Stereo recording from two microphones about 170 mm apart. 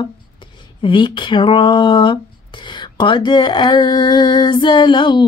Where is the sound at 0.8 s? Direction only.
30° left (ahead or behind).